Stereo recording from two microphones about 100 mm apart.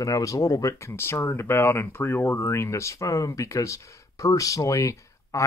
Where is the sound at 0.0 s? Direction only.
35° left (ahead or behind).